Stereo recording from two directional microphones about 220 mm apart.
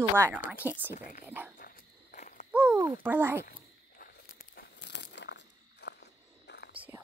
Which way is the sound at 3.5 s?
45° left (ahead or behind).